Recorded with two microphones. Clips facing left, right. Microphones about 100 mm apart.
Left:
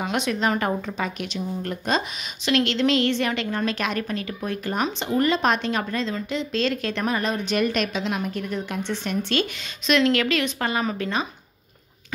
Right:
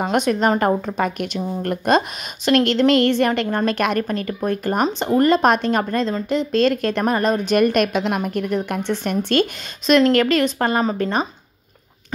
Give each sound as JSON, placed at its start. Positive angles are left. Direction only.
{"t": 0.0, "sound": "a woman's voice", "side_deg": -45}